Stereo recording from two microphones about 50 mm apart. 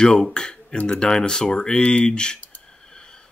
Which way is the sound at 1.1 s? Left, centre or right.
Centre.